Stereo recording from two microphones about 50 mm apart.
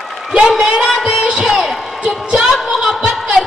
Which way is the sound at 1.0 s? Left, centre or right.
Centre.